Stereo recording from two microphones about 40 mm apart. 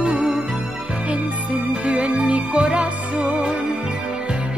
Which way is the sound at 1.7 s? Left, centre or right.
Right.